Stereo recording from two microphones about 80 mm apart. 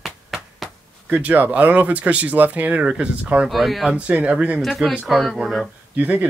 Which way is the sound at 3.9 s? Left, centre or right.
Centre.